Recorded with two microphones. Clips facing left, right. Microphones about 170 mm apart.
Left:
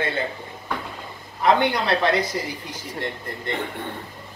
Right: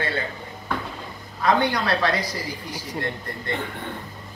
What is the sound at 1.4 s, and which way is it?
Speech, 20° left (ahead or behind).